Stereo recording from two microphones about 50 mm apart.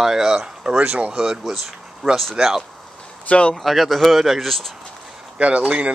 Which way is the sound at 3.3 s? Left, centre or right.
Left.